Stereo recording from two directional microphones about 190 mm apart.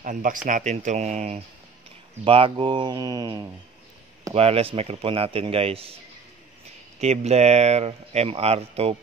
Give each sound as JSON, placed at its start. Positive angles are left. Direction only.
{"t": 0.0, "sound": "speech", "side_deg": -45}
{"t": 4.3, "sound": "speech", "side_deg": -30}
{"t": 7.0, "sound": "speech", "side_deg": -35}